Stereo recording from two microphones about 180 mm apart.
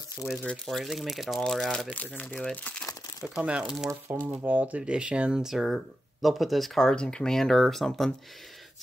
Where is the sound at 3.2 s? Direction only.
5° right (ahead or behind).